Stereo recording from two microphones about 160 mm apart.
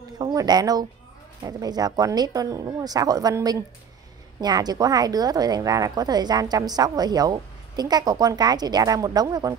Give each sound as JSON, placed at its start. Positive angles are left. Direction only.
{"t": 0.2, "sound": "a woman's voice", "side_deg": -25}